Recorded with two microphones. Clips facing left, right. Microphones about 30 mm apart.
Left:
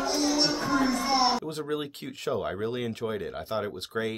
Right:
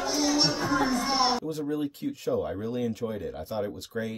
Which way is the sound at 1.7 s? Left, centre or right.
Left.